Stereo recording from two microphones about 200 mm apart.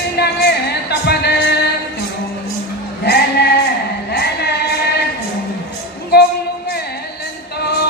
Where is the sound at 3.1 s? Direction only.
55° left (ahead or behind).